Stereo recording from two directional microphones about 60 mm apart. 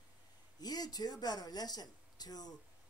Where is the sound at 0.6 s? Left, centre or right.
Left.